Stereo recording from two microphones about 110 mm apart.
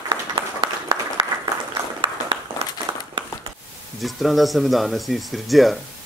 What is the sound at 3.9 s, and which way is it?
Speech, centre (ahead or behind).